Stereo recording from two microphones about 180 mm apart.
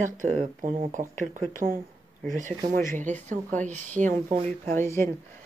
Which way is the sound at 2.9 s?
45° right (ahead or behind).